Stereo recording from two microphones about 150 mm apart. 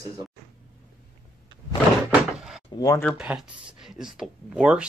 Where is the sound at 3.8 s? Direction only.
5° right (ahead or behind).